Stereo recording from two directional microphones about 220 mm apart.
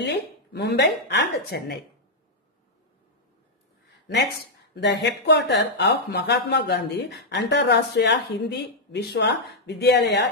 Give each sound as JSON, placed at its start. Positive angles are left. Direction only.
{"t": 0.0, "sound": "speech", "side_deg": 50}
{"t": 4.7, "sound": "speech", "side_deg": 50}